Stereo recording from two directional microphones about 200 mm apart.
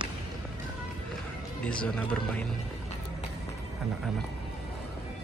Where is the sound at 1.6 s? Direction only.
5° left (ahead or behind).